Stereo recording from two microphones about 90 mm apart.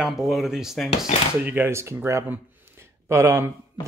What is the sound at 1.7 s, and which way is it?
Speech, 30° right (ahead or behind).